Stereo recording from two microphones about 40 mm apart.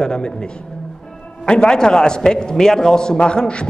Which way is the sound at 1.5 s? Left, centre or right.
Centre.